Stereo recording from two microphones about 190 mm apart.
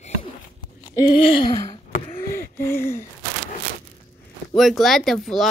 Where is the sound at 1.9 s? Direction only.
30° left (ahead or behind).